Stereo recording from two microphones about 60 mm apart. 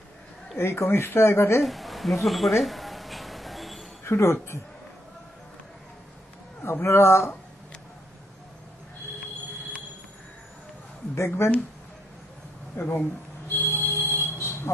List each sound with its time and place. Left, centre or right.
0.6 s speech: left
1.6 s a sound: centre
4.0 s speech: left
6.6 s speech: left
11.1 s speech: left
12.7 s speech: left
13.5 s a sound: left